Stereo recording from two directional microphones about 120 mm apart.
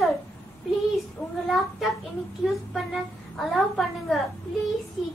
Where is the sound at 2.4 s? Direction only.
Centre (ahead or behind).